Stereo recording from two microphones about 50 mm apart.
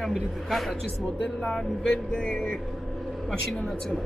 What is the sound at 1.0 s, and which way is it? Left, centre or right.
Speech, centre.